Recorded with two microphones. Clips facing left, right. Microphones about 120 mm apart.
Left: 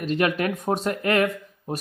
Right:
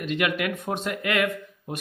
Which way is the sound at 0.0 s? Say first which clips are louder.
Left 3 dB; 35° left (ahead or behind).